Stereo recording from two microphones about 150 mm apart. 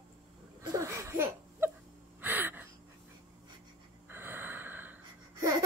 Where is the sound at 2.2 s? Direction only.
15° right (ahead or behind).